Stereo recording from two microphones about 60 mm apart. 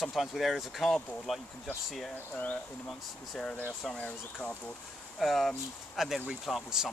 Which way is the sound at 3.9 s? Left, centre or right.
Centre.